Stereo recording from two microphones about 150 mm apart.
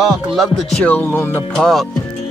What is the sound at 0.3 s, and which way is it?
Speech, centre (ahead or behind).